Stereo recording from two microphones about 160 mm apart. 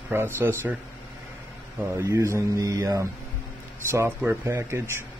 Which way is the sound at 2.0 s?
15° right (ahead or behind).